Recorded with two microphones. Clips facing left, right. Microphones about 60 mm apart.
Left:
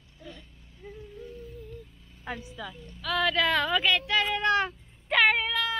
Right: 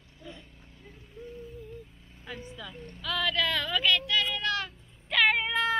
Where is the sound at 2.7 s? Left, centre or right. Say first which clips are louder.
Right 3 dB; right.